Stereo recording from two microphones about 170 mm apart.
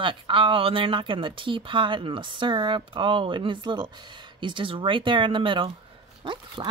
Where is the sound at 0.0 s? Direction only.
30° right (ahead or behind).